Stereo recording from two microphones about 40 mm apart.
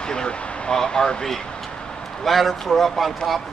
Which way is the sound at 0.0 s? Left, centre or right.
Left.